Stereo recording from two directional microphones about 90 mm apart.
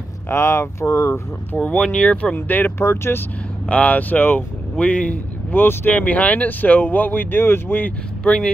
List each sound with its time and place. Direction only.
0.3 s speech: 30° left (ahead or behind)
1.6 s speech: 10° left (ahead or behind)
3.6 s speech: 15° left (ahead or behind)
8.2 s speech: 10° left (ahead or behind)